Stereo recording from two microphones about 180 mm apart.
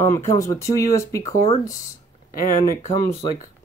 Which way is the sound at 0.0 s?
15° left (ahead or behind).